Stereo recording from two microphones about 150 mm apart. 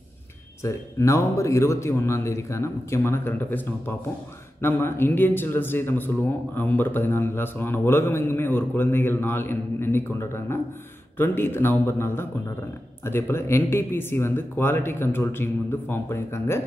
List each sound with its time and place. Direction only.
0.7 s a man's voice: 20° left (ahead or behind)